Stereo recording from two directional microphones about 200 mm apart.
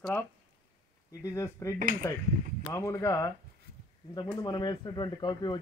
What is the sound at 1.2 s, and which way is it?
Speech, 15° left (ahead or behind).